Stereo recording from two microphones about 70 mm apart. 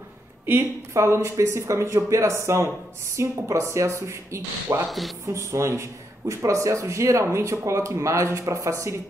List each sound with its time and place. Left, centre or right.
0.5 s speech: right